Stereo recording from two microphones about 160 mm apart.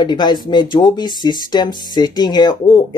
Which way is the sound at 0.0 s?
30° left (ahead or behind).